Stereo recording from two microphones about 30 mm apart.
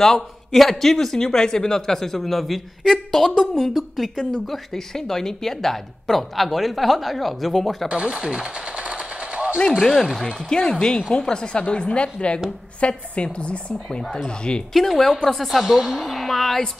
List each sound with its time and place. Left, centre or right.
0.0 s speech: centre
1.1 s speech: left
3.7 s a woman's voice: centre
4.3 s a woman's voice: centre
7.9 s speech: right
8.7 s machine gun: right
10.5 s a woman's voice: left
14.7 s speech: centre
15.5 s a woman's voice: centre
16.0 s a woman's voice: centre